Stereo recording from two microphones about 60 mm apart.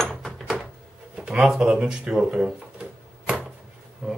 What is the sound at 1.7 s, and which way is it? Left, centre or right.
Typewriter, centre.